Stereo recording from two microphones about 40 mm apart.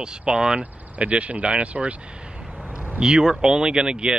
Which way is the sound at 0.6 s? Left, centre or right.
Right.